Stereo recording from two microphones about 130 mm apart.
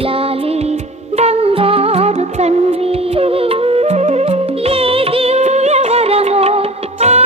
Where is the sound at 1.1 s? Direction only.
55° right (ahead or behind).